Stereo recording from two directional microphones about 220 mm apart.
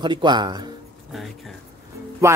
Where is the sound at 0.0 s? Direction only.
20° right (ahead or behind).